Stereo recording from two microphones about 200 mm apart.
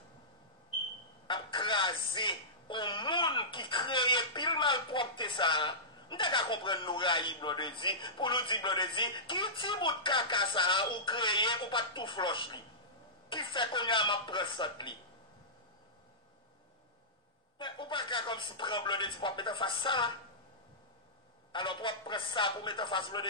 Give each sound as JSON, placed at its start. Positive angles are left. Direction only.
{"t": 1.2, "sound": "a sound", "side_deg": 25}
{"t": 13.3, "sound": "speech", "side_deg": 25}
{"t": 17.6, "sound": "speech", "side_deg": 25}
{"t": 21.5, "sound": "speech", "side_deg": 25}